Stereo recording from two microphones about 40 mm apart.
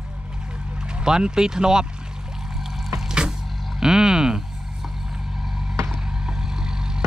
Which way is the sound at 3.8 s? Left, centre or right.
Centre.